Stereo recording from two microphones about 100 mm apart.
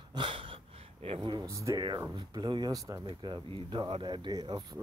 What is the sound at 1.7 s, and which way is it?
Speech, 45° right (ahead or behind).